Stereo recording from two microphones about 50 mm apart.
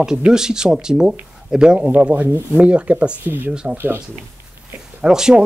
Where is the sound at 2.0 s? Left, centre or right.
Right.